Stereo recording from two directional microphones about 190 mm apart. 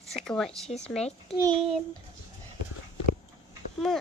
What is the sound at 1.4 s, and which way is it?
Speech, 30° right (ahead or behind).